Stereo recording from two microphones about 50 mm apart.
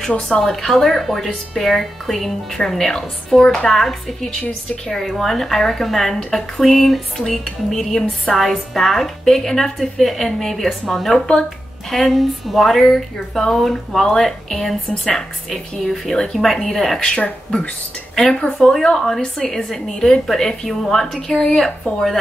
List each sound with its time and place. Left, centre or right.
0.3 s a woman's voice: centre
6.1 s a woman's voice: centre
6.6 s a woman's voice: centre
11.9 s a woman's voice: centre